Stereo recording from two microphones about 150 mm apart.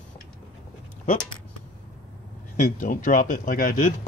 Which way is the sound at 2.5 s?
60° left (ahead or behind).